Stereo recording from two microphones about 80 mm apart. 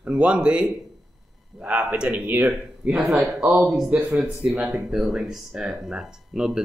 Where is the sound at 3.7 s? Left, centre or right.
Centre.